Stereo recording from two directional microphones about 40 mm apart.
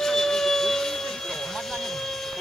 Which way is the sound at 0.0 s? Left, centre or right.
Centre.